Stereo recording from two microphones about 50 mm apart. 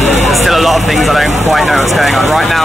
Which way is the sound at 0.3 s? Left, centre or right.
Centre.